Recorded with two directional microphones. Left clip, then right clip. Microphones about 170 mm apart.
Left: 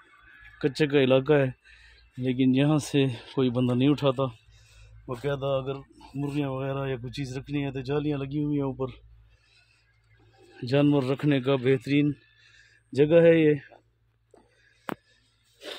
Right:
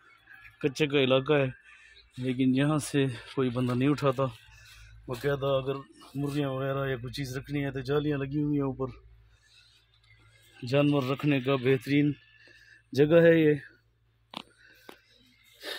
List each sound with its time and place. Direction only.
0.6 s speech: 35° left (ahead or behind)
4.1 s speech: 15° left (ahead or behind)
4.7 s a sound: 5° left (ahead or behind)
6.5 s speech: centre (ahead or behind)
10.5 s speech: 30° left (ahead or behind); by 12.1 s 15° left (ahead or behind)
12.4 s a sound: 5° left (ahead or behind)